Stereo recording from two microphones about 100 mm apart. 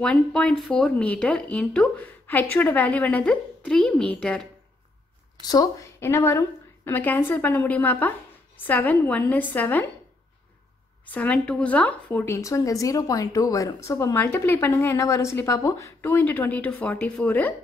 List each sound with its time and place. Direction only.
0.0 s a woman's voice: 10° left (ahead or behind)
2.0 s a woman's voice: 20° left (ahead or behind)
5.4 s a woman's voice: 35° left (ahead or behind); by 9.8 s 15° left (ahead or behind)
11.1 s a woman's voice: 15° left (ahead or behind)
12.4 s a woman's voice: 35° left (ahead or behind); by 17.6 s 15° left (ahead or behind)